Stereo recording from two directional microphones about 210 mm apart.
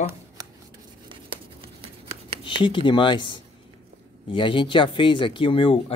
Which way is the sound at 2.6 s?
25° left (ahead or behind).